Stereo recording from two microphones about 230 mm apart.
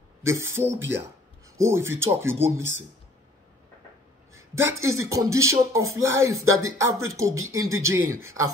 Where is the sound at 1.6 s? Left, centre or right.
Centre.